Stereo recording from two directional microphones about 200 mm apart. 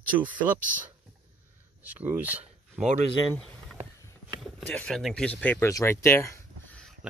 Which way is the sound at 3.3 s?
5° left (ahead or behind).